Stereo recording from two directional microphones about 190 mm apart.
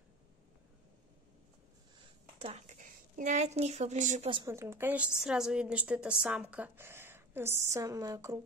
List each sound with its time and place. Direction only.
2.3 s a woman's voice: 35° right (ahead or behind)
4.5 s a woman's voice: 15° right (ahead or behind)